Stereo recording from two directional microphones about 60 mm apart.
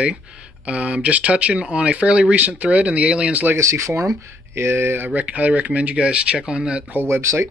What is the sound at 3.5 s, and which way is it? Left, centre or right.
Speech, right.